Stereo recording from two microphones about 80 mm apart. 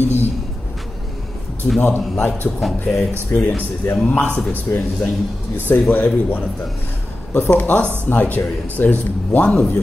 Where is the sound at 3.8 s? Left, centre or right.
Left.